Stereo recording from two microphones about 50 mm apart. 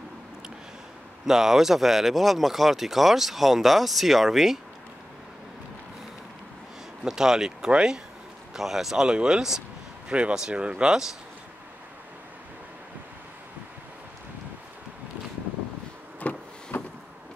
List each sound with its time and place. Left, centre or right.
1.2 s speech: centre
7.1 s speech: centre
9.0 s speech: centre
10.0 s speech: right
16.2 s vehicle: left
16.7 s vehicle: left